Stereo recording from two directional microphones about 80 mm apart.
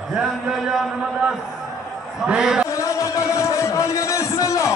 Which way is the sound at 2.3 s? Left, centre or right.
Centre.